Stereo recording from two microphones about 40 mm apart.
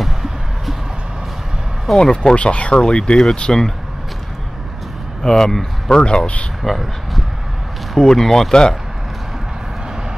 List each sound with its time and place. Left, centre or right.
2.0 s speech: left
5.2 s speech: centre
5.9 s speech: left
6.6 s speech: centre